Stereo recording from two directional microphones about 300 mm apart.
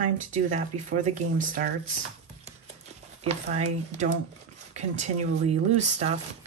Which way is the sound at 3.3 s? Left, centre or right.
Right.